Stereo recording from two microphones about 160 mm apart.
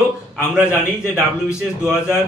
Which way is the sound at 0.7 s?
15° left (ahead or behind).